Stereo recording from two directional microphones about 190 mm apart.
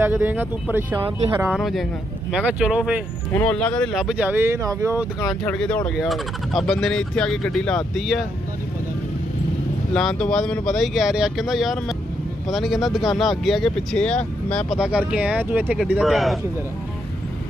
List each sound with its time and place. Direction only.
0.0 s speech: 10° right (ahead or behind)
1.0 s speech: 20° right (ahead or behind)
1.5 s speech: centre (ahead or behind)
3.3 s speech: 5° left (ahead or behind); by 5.0 s 15° right (ahead or behind)
5.4 s speech: 5° left (ahead or behind)
9.9 s speech: centre (ahead or behind)